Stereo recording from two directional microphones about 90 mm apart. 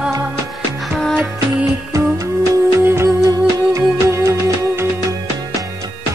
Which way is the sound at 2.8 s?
30° right (ahead or behind).